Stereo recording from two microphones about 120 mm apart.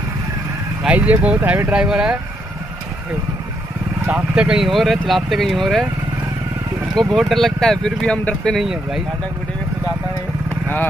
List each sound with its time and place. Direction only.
0.8 s speech: 10° right (ahead or behind)
4.0 s speech: 10° right (ahead or behind)
7.1 s speech: centre (ahead or behind)